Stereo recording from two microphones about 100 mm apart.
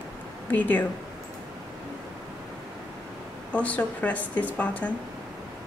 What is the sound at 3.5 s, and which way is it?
A woman's voice, 15° left (ahead or behind).